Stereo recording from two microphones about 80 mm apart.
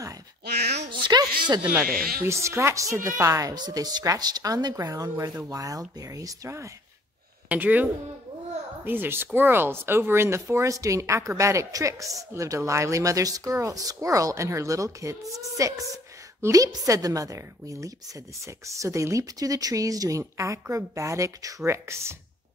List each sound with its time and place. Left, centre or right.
0.8 s a sound: right
1.8 s speech: right
3.5 s speech: right
7.4 s speech: right